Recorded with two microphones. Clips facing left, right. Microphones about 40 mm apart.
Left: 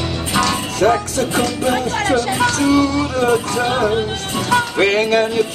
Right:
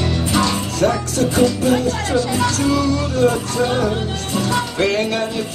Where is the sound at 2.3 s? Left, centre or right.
Left.